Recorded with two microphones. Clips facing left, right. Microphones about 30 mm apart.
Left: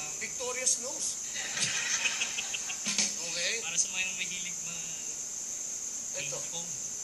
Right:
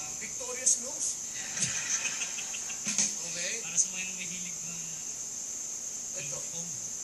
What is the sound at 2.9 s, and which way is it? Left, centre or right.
Music, left.